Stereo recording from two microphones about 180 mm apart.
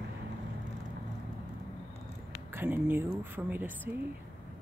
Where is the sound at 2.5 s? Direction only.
10° right (ahead or behind).